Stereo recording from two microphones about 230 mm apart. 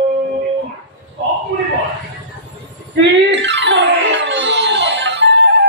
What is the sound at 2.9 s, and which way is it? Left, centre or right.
Music, right.